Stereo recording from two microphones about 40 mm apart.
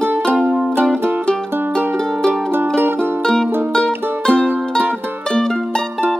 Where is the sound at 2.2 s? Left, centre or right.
Right.